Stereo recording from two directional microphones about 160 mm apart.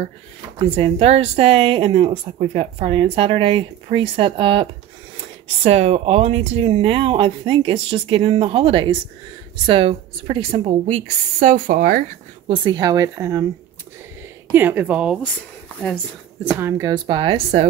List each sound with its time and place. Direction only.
0.6 s a woman's voice: 35° right (ahead or behind); by 12.0 s 60° right (ahead or behind)
12.4 s a woman's voice: 25° right (ahead or behind)
14.5 s speech: 10° right (ahead or behind)
16.5 s a woman's voice: 15° right (ahead or behind); by 17.6 s 35° right (ahead or behind)